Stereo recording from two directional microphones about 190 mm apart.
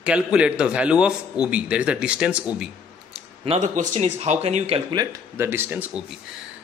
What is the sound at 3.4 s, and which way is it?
Speech, 35° right (ahead or behind).